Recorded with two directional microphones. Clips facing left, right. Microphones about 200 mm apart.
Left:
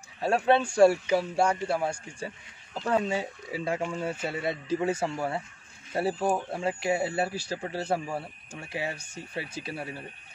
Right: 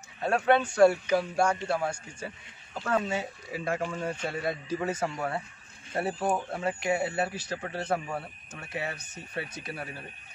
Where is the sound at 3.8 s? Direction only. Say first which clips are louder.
Left 1 dB; 10° left (ahead or behind).